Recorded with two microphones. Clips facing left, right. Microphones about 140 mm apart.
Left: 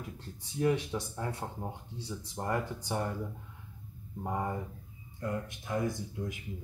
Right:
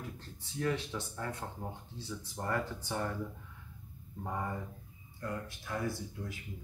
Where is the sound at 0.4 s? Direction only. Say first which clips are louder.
Left 5 dB; 15° left (ahead or behind).